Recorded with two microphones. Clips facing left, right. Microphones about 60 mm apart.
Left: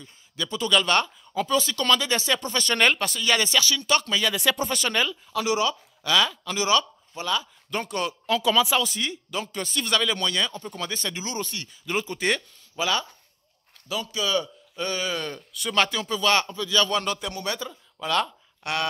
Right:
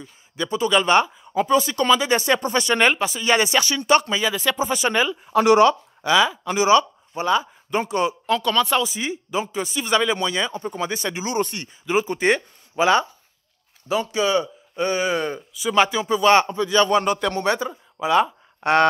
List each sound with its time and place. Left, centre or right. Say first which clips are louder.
0.0 s speech: right 5 dB; right
3.2 s speech: right 4 dB; right
4.2 s speech: right 2 dB; centre
5.1 s speech: right 9 dB; right
5.4 s speech: right 10 dB; right
6.0 s speech: right 5 dB; centre
8.3 s speech: even; centre; by 11.7 s right
11.8 s speech: right 7 dB; centre
12.1 s speech: right 6 dB; right
15.5 s speech: right 5 dB; centre
16.2 s a man's voice: right 7 dB; right
18.0 s speech: right 7 dB; centre
18.6 s speech: right 11 dB; right